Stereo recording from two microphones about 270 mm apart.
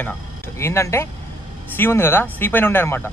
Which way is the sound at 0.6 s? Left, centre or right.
Centre.